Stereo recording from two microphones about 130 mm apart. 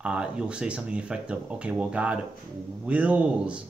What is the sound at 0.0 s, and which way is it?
Speech, 5° right (ahead or behind).